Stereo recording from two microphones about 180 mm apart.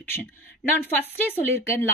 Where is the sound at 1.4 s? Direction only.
15° left (ahead or behind).